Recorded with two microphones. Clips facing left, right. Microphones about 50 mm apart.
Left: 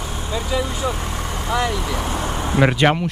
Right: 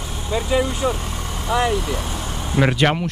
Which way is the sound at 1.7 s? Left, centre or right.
Centre.